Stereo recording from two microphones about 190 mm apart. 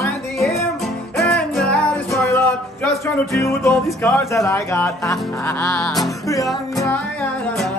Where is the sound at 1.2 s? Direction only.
5° left (ahead or behind).